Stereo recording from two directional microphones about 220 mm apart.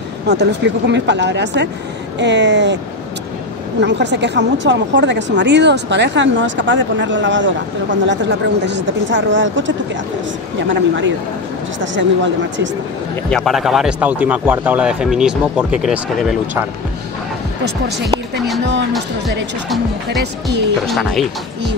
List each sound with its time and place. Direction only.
0.3 s a woman's voice: 50° right (ahead or behind)
3.8 s a woman's voice: 50° right (ahead or behind)
10.7 s a woman's voice: 55° right (ahead or behind)
13.3 s speech: centre (ahead or behind)
17.6 s a woman's voice: 50° right (ahead or behind)
20.8 s speech: centre (ahead or behind)